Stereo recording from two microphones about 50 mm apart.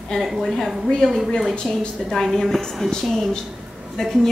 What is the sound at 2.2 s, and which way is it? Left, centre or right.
Speech, centre.